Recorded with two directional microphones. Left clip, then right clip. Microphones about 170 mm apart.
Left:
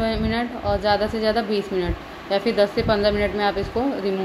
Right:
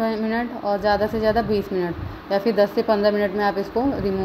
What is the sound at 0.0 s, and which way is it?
Speech, 25° right (ahead or behind).